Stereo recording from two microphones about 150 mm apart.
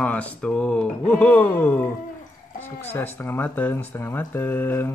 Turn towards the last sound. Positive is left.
turn(degrees=15)  # may be behind; listen again after turning